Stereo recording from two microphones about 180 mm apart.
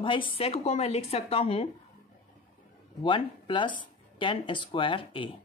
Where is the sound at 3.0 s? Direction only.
25° left (ahead or behind).